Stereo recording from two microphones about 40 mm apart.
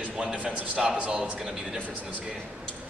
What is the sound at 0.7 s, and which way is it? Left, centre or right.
Speech, right.